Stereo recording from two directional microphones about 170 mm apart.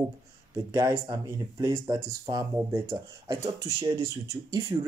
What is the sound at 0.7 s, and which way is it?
Speech, 25° right (ahead or behind).